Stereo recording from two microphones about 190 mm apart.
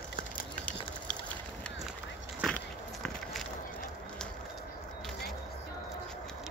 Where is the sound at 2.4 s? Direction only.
5° left (ahead or behind).